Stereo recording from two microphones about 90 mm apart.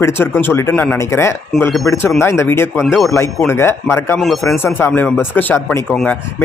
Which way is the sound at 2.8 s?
Centre (ahead or behind).